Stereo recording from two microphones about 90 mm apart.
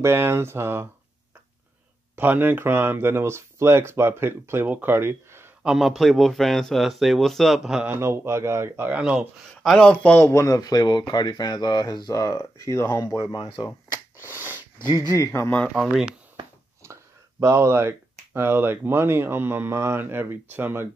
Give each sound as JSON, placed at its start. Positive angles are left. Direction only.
{"t": 0.0, "sound": "speech", "side_deg": -25}
{"t": 2.1, "sound": "speech", "side_deg": -20}
{"t": 5.6, "sound": "speech", "side_deg": -5}
{"t": 7.9, "sound": "speech", "side_deg": -25}
{"t": 8.9, "sound": "speech", "side_deg": -10}
{"t": 9.6, "sound": "speech", "side_deg": 5}
{"t": 10.2, "sound": "speech", "side_deg": 35}
{"t": 12.9, "sound": "speech", "side_deg": 45}
{"t": 14.2, "sound": "a sound", "side_deg": 30}
{"t": 14.8, "sound": "speech", "side_deg": 45}
{"t": 15.7, "sound": "speech", "side_deg": -5}
{"t": 16.4, "sound": "a sound", "side_deg": -75}
{"t": 16.8, "sound": "speech", "side_deg": -30}